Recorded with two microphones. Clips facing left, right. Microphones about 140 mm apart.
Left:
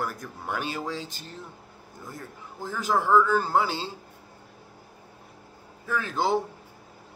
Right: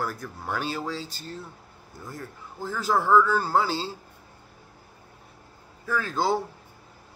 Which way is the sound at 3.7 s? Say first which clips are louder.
Right 2 dB; 40° right (ahead or behind).